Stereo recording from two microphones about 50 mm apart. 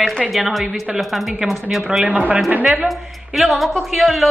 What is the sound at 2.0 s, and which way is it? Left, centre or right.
Speech, right.